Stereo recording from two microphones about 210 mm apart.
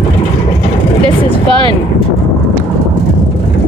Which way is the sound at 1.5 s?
25° right (ahead or behind).